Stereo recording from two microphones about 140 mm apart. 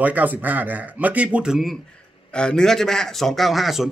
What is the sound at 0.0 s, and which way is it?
A man's voice, 10° right (ahead or behind).